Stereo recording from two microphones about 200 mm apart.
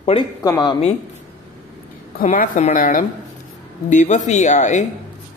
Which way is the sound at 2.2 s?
40° left (ahead or behind).